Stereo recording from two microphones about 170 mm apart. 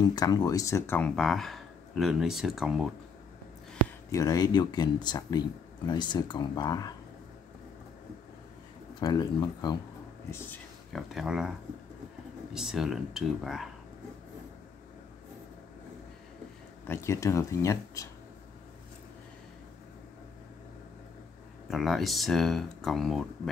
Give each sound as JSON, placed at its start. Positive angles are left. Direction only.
{"t": 0.0, "sound": "speech", "side_deg": 25}
{"t": 4.1, "sound": "speech", "side_deg": 20}
{"t": 9.0, "sound": "speech", "side_deg": 25}
{"t": 10.3, "sound": "speech", "side_deg": 15}
{"t": 10.9, "sound": "speech", "side_deg": 0}
{"t": 12.5, "sound": "speech", "side_deg": 0}
{"t": 16.8, "sound": "speech", "side_deg": 15}
{"t": 21.6, "sound": "speech", "side_deg": 0}